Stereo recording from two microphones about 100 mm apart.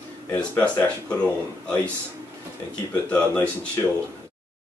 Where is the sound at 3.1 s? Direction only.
15° left (ahead or behind).